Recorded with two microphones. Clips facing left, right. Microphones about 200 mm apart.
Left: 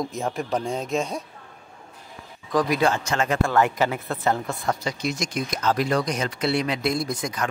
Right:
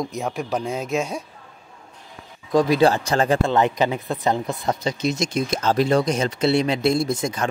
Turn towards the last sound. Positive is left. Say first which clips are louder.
# right 4 dB
turn(degrees=-25)  # may be behind; listen again after turning